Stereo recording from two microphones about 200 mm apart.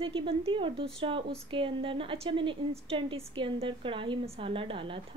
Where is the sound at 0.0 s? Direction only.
25° right (ahead or behind).